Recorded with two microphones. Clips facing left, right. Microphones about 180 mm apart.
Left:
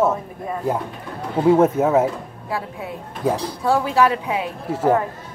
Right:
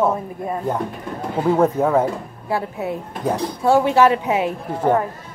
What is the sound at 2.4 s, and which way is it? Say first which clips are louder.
Speech: right 5 dB; 25° right (ahead or behind).